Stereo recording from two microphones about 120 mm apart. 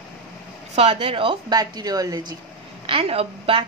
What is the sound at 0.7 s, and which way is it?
Speech, 55° right (ahead or behind).